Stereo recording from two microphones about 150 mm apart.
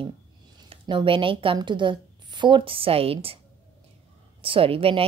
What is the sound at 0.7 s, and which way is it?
A woman's voice, 35° right (ahead or behind).